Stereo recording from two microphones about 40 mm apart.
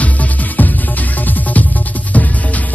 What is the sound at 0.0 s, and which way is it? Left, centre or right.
Music, left.